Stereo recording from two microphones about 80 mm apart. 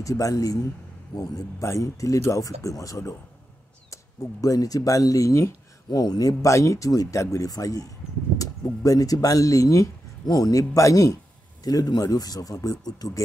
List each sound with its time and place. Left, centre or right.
0.0 s speech: left
5.9 s speech: left